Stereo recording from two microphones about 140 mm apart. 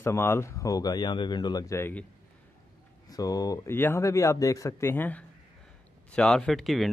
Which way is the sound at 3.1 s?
25° left (ahead or behind).